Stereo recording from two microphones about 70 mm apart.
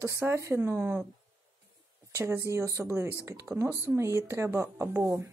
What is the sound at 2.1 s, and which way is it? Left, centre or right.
Speech, right.